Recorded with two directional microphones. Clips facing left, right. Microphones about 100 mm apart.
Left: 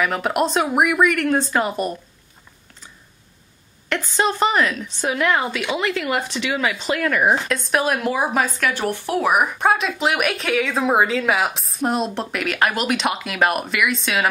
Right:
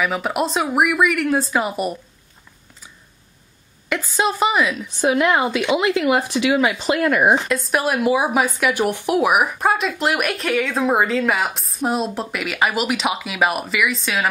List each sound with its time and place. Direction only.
0.0 s speech: centre (ahead or behind)
3.9 s a woman's voice: 5° right (ahead or behind)
7.4 s speech: centre (ahead or behind)